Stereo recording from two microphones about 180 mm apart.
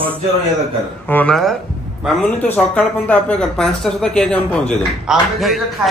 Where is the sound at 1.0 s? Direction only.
10° left (ahead or behind).